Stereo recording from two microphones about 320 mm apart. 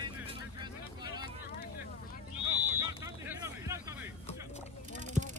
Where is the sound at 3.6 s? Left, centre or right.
Centre.